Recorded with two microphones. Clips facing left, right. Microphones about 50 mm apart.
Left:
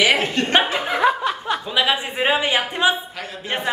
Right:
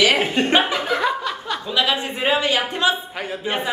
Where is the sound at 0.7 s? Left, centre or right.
Centre.